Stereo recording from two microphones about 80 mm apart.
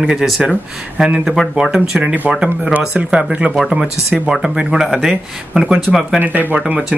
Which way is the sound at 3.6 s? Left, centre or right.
Centre.